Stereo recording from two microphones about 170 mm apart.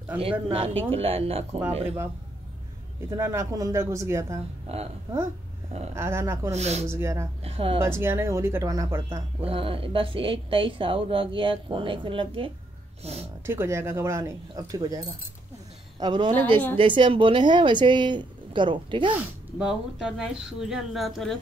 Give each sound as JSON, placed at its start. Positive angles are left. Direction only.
{"t": 0.2, "sound": "a woman's voice", "side_deg": -35}
{"t": 3.1, "sound": "speech", "side_deg": -15}
{"t": 4.7, "sound": "a woman's voice", "side_deg": -35}
{"t": 5.9, "sound": "speech", "side_deg": -15}
{"t": 6.5, "sound": "a woman's voice", "side_deg": -40}
{"t": 6.9, "sound": "speech", "side_deg": -15}
{"t": 7.4, "sound": "a woman's voice", "side_deg": -35}
{"t": 7.8, "sound": "speech", "side_deg": -15}
{"t": 9.4, "sound": "a woman's voice", "side_deg": -35}
{"t": 13.5, "sound": "speech", "side_deg": -15}
{"t": 19.1, "sound": "speech", "side_deg": -5}